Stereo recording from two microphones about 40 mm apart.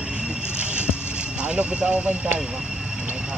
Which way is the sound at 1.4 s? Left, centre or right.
Right.